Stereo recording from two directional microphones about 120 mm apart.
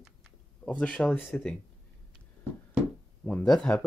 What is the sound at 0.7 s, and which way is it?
Speech, 10° left (ahead or behind).